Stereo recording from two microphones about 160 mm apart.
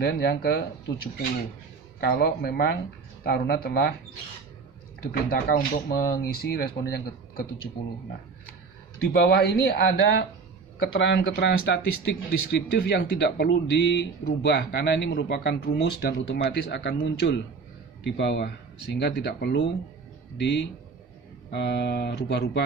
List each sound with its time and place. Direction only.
0.0 s speech: 85° left
2.0 s speech: 75° left (ahead or behind)
5.1 s speech: 60° left (ahead or behind)
9.1 s speech: 90° left